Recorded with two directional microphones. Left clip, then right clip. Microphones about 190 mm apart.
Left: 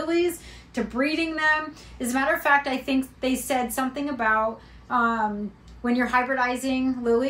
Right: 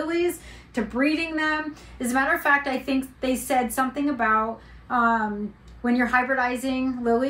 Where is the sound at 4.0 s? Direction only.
20° left (ahead or behind).